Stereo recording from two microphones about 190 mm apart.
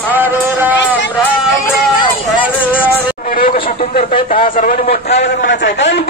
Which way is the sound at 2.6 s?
10° left (ahead or behind).